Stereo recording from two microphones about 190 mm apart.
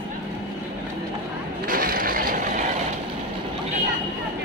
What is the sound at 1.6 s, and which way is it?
Vehicle, 50° right (ahead or behind).